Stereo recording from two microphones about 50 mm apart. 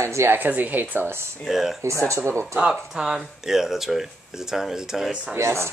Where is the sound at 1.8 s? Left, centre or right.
Right.